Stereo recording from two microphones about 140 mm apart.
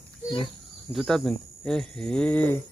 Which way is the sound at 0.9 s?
Centre (ahead or behind).